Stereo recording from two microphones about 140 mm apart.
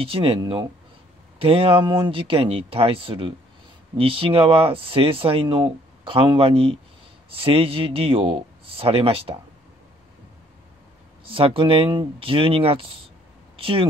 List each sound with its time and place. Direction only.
0.0 s speech: 40° right (ahead or behind)
1.4 s speech: 40° right (ahead or behind)
11.2 s speech: 40° right (ahead or behind)